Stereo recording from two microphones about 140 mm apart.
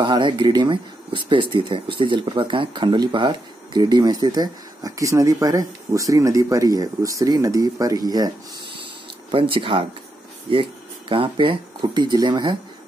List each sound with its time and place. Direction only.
0.0 s speech: 30° right (ahead or behind)
9.3 s speech: 40° right (ahead or behind)